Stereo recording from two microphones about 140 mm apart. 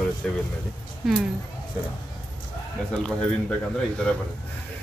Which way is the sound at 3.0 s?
5° left (ahead or behind).